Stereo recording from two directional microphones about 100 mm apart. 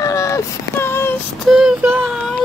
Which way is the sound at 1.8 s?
20° right (ahead or behind).